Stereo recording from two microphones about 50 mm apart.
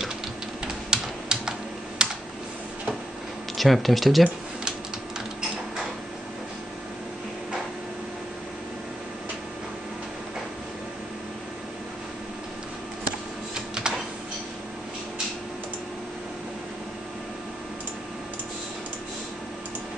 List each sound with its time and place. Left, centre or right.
0.8 s typing: centre
2.0 s computer keyboard: centre
3.5 s speech: centre
13.8 s printer: centre